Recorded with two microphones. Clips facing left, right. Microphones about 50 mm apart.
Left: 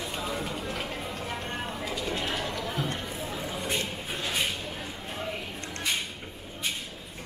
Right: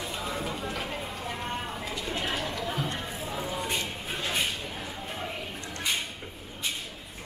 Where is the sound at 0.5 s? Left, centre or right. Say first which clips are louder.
Even; right.